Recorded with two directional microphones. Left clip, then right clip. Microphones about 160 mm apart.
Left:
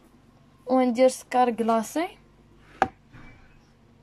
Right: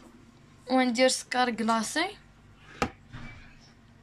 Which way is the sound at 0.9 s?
25° left (ahead or behind).